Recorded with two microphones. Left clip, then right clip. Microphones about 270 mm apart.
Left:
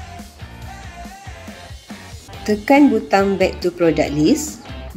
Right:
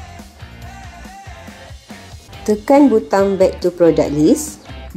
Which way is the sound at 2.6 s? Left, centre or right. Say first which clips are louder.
Right 2 dB; centre.